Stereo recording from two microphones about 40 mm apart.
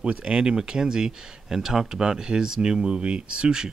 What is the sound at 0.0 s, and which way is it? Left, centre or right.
Speech, right.